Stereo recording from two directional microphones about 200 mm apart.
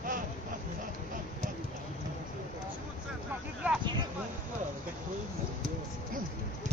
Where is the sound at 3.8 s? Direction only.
20° right (ahead or behind).